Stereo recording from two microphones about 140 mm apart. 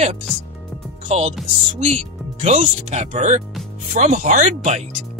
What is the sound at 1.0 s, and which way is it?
Speech, 50° right (ahead or behind).